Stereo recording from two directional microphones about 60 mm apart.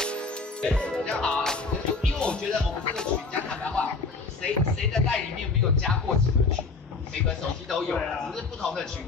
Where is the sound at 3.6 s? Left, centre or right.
Left.